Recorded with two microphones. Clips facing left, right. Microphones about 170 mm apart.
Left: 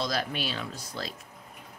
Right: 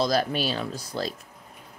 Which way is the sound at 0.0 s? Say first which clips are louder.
Right 7 dB; 40° right (ahead or behind).